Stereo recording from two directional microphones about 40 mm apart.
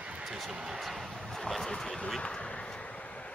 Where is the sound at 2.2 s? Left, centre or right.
Left.